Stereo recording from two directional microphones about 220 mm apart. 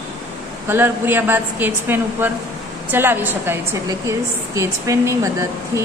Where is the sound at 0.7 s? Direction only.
10° right (ahead or behind).